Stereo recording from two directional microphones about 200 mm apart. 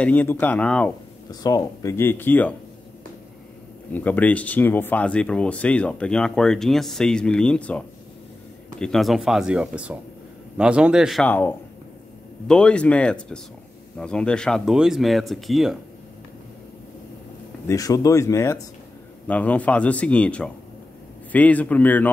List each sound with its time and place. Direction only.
0.0 s a man's voice: 10° left (ahead or behind)
1.3 s a man's voice: 20° left (ahead or behind)
3.9 s speech: 10° left (ahead or behind)
17.6 s a man's voice: 15° left (ahead or behind)